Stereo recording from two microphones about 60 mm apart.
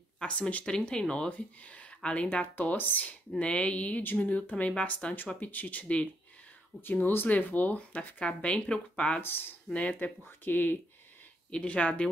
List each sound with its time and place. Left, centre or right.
0.2 s speech: left
2.5 s speech: left
3.3 s speech: centre
6.8 s speech: left; by 9.2 s centre
9.2 s speech: left
9.8 s speech: left
11.5 s speech: centre